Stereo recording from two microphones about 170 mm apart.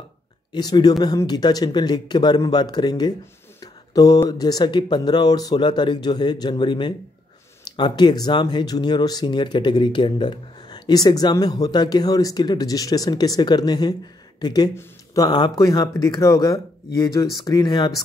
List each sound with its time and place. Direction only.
0.5 s speech: 25° left (ahead or behind)